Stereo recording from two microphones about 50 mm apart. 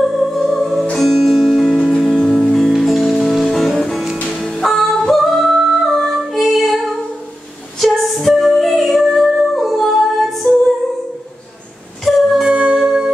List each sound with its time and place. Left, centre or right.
0.0 s music: centre
4.6 s yodeling: centre
7.8 s music: centre
10.4 s music: left
12.0 s music: centre
12.4 s music: centre